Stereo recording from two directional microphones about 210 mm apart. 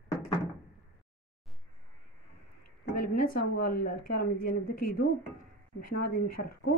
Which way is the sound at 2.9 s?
40° left (ahead or behind).